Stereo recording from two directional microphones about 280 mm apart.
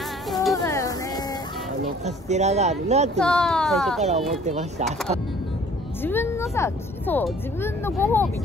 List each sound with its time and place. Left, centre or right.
0.3 s music: centre
0.7 s a sound: centre
2.0 s speech: right
3.2 s speech: centre
4.5 s speech: right
6.0 s speech: centre